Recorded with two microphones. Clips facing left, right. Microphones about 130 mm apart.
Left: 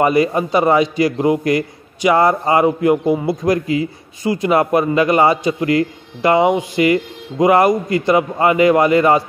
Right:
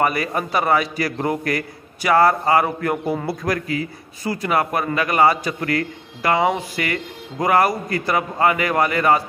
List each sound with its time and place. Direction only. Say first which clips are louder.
0.0 s a man's voice: left 6 dB; 25° left (ahead or behind)